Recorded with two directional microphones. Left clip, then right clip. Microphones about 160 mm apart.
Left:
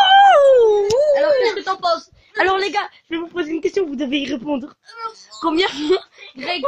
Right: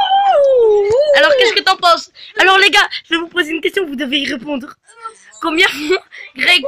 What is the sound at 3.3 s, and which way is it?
A woman's voice, centre (ahead or behind).